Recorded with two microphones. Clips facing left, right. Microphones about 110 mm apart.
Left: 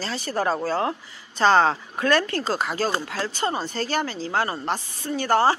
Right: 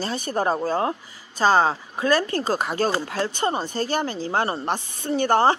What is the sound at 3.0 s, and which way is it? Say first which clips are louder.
Speech: right 3 dB; 30° right (ahead or behind).